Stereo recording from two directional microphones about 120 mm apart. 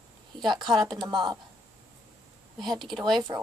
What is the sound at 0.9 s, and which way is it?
Speech, 40° right (ahead or behind).